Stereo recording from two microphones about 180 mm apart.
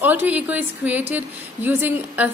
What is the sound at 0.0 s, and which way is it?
A woman's voice, 10° right (ahead or behind).